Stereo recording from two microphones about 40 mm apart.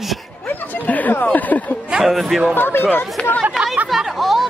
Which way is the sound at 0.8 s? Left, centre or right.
Left.